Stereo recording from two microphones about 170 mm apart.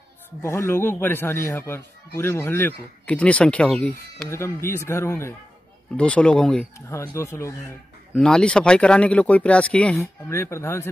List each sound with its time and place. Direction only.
0.4 s a man's voice: 15° left (ahead or behind)
4.3 s a man's voice: 15° left (ahead or behind)
6.9 s a man's voice: 15° left (ahead or behind)
8.1 s a man's voice: 5° left (ahead or behind)